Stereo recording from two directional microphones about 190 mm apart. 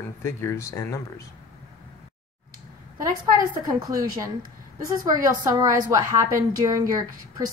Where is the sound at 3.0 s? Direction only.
20° right (ahead or behind).